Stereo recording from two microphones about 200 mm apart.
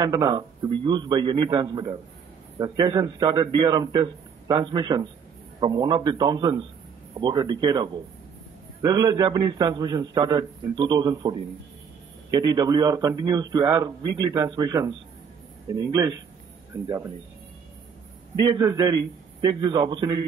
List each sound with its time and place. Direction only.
0.0 s a man's voice: 20° right (ahead or behind)
18.6 s a man's voice: 20° right (ahead or behind)